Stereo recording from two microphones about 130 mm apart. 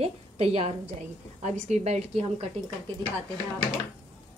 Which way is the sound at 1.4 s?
60° right (ahead or behind).